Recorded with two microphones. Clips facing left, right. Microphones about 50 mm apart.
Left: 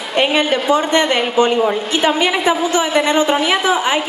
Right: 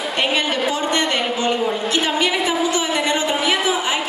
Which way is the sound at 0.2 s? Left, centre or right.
Left.